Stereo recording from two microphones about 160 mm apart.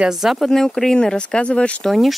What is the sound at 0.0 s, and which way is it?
Speech, centre (ahead or behind).